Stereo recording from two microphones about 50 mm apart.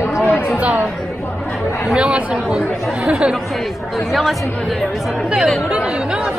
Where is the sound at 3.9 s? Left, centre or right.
Centre.